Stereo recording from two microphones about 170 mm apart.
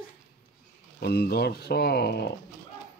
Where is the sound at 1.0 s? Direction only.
70° left (ahead or behind).